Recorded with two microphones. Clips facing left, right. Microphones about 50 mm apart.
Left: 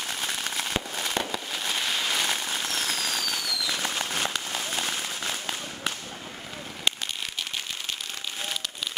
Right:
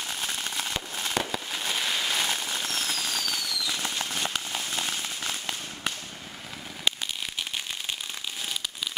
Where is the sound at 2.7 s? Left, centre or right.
Centre.